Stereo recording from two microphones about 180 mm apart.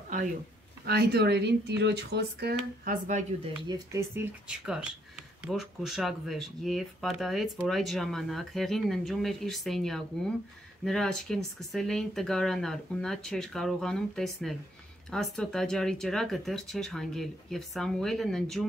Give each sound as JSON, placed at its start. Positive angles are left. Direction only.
{"t": 0.8, "sound": "speech", "side_deg": -65}
{"t": 2.8, "sound": "speech", "side_deg": -45}
{"t": 3.6, "sound": "speech", "side_deg": -20}